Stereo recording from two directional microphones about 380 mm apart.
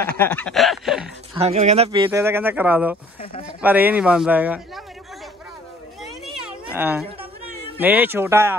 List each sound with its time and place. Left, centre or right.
0.2 s a man's voice: centre
1.3 s a man's voice: centre
6.0 s a sound: centre
7.8 s a man's voice: centre